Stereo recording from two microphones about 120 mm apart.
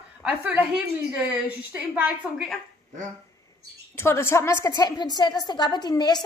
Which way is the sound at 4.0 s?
20° left (ahead or behind).